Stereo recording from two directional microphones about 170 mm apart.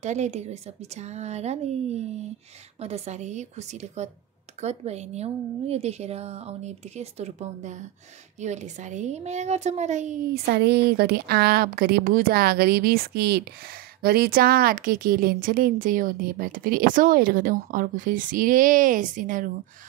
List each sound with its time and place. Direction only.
0.0 s a woman's voice: 45° right (ahead or behind)
10.3 s speech: 70° right (ahead or behind); by 19.5 s 50° right (ahead or behind)